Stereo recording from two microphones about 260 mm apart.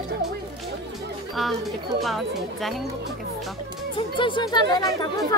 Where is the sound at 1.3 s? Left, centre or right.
Centre.